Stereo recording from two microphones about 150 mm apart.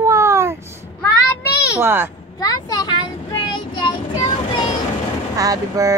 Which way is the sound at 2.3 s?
25° left (ahead or behind).